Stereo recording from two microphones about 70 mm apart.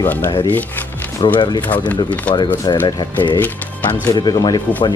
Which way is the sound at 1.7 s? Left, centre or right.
Left.